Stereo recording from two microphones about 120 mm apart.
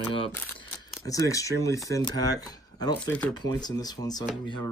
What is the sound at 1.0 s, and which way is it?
Speech, 30° left (ahead or behind).